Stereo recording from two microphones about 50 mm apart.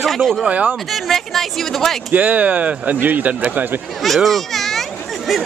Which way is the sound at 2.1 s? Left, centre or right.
Right.